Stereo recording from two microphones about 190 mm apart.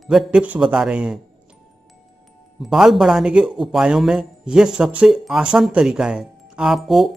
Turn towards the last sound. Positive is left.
turn(degrees=0)  # may be behind; listen again after turning